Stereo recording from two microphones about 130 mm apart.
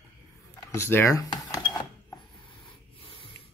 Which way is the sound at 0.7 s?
20° left (ahead or behind).